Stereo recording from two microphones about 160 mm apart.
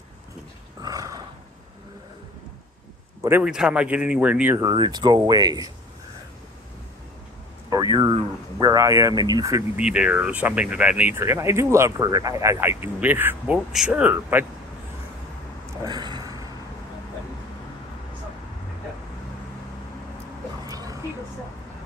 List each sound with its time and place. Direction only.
0.8 s roar: 25° right (ahead or behind)
3.2 s a man's voice: 15° right (ahead or behind)
4.6 s speech: 25° right (ahead or behind)
7.7 s speech: 25° right (ahead or behind)
9.8 s speech: 5° right (ahead or behind)
15.8 s a sound: 25° right (ahead or behind)
20.6 s a sound: 25° right (ahead or behind)